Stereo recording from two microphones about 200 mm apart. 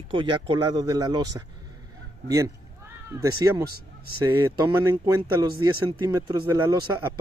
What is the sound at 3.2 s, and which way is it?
Speech, 20° right (ahead or behind).